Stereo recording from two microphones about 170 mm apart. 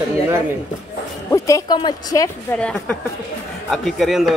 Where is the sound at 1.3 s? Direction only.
20° left (ahead or behind).